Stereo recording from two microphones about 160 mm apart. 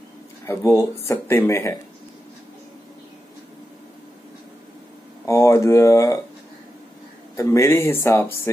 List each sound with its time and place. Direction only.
0.5 s speech: 20° left (ahead or behind)
5.2 s speech: 20° left (ahead or behind)
7.3 s speech: 20° left (ahead or behind)